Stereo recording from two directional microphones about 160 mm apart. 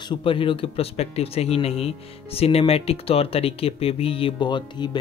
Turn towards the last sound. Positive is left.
turn(degrees=30)  # may be behind; listen again after turning